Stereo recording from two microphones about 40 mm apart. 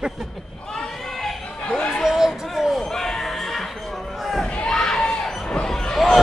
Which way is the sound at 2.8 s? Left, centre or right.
Centre.